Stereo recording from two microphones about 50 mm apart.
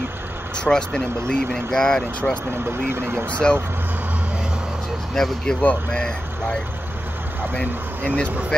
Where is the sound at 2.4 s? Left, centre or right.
Right.